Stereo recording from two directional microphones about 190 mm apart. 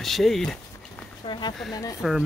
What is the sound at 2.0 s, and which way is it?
Speech, centre (ahead or behind).